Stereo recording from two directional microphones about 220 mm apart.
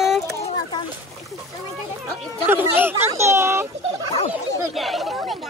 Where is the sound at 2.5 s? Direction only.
10° right (ahead or behind).